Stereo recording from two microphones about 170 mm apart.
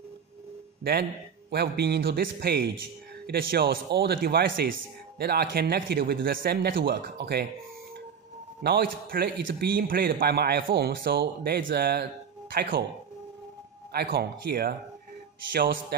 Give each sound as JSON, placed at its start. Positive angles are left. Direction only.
{"t": 1.5, "sound": "a man's voice", "side_deg": -70}
{"t": 5.2, "sound": "a man's voice", "side_deg": -70}
{"t": 8.6, "sound": "a man's voice", "side_deg": -65}
{"t": 13.9, "sound": "a man's voice", "side_deg": -65}